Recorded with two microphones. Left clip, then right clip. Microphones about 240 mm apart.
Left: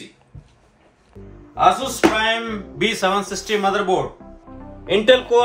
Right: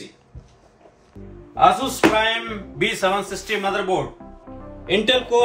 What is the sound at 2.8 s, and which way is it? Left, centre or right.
A man's voice, centre.